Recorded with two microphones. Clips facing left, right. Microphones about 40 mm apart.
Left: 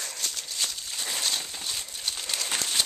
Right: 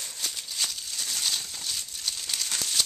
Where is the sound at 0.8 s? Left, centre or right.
Centre.